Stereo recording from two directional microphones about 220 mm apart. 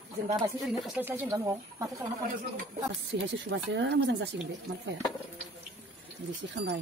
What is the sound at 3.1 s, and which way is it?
Speech, 55° right (ahead or behind).